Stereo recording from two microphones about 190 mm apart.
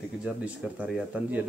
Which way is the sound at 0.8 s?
10° right (ahead or behind).